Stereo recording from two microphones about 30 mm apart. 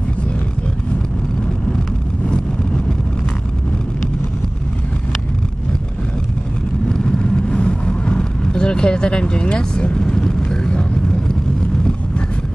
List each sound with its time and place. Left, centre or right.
2.2 s vehicle: left
6.9 s vehicle: left